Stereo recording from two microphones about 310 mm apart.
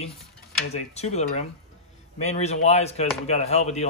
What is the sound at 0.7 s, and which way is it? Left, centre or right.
Speech, left.